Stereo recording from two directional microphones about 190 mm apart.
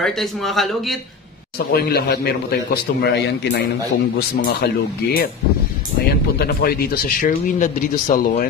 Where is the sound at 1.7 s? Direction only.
55° left (ahead or behind).